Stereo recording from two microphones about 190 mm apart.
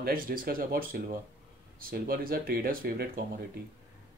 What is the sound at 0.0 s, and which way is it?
Speech, 50° right (ahead or behind).